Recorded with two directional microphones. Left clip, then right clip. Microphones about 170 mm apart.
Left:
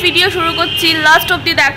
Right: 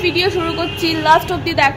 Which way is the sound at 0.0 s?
10° right (ahead or behind).